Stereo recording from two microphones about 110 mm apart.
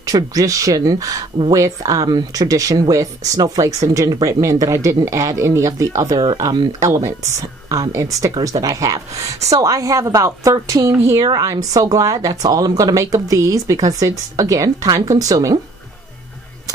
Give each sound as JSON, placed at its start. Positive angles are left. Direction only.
{"t": 0.0, "sound": "speech", "side_deg": -35}
{"t": 11.1, "sound": "speech", "side_deg": -35}